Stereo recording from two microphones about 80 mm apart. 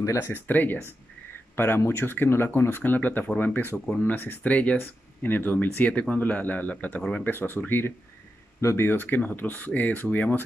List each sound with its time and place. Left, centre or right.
0.2 s speech: left